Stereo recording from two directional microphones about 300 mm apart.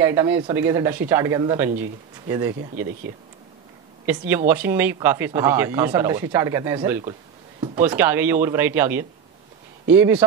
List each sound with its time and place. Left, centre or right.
0.0 s speech: centre
4.0 s speech: centre